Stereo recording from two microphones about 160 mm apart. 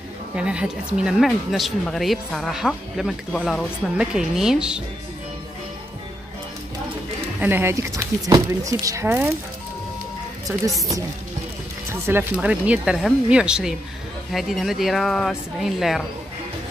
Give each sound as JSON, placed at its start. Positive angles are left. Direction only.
{"t": 0.4, "sound": "speech", "side_deg": -5}
{"t": 7.3, "sound": "speech", "side_deg": -15}
{"t": 11.9, "sound": "speech", "side_deg": -15}